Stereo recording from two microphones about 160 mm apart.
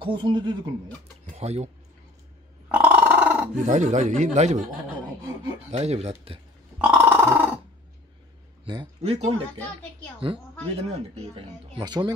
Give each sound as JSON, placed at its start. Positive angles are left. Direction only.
{"t": 0.0, "sound": "speech", "side_deg": -30}
{"t": 1.3, "sound": "speech", "side_deg": -45}
{"t": 2.7, "sound": "a sound", "side_deg": -10}
{"t": 3.5, "sound": "speech", "side_deg": -50}
{"t": 5.7, "sound": "speech", "side_deg": -45}
{"t": 6.8, "sound": "cat", "side_deg": -10}
{"t": 9.0, "sound": "speech", "side_deg": -40}
{"t": 11.3, "sound": "speech", "side_deg": -30}